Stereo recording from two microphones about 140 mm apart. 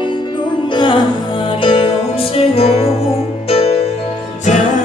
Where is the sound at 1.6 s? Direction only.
40° left (ahead or behind).